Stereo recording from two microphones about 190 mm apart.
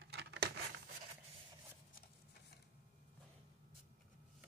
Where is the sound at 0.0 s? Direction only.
60° right (ahead or behind).